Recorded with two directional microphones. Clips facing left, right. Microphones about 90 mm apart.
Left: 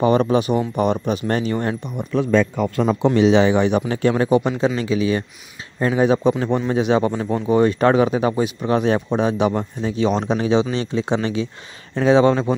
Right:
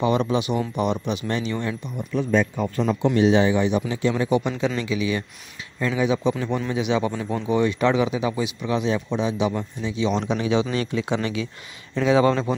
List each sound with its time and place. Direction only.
0.0 s speech: 45° left (ahead or behind); by 2.8 s 90° left
2.8 s speech: 50° left (ahead or behind)
3.2 s speech: 90° left; by 3.8 s 65° left (ahead or behind)
3.9 s speech: 55° left (ahead or behind); by 12.5 s 30° left (ahead or behind)